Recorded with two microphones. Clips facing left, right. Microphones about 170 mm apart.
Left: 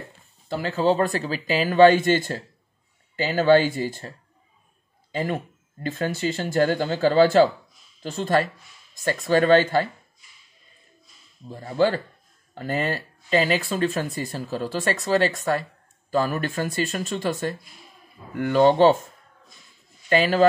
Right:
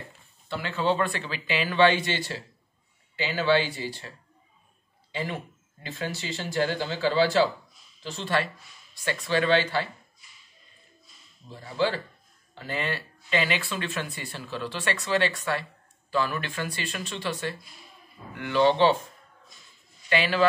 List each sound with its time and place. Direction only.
0.5 s speech: 40° left (ahead or behind)
5.1 s speech: 50° left (ahead or behind)
11.4 s speech: 50° left (ahead or behind)
20.1 s speech: 40° left (ahead or behind)